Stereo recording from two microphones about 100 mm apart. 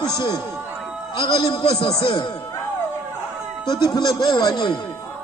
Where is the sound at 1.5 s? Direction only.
80° left.